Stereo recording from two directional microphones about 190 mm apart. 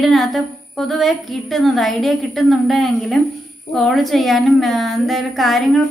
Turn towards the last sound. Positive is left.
turn(degrees=0)  # may be behind; listen again after turning